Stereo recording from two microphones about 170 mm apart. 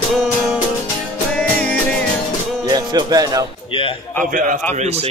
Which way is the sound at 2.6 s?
25° right (ahead or behind).